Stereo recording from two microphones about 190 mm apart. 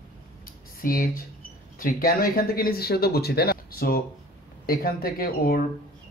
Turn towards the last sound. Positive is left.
turn(degrees=50)  # may be behind; listen again after turning